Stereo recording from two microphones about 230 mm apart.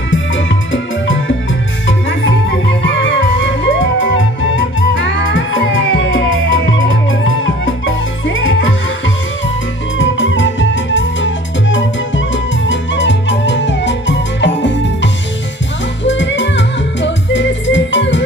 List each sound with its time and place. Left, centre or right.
0.1 s music: left
9.9 s music: left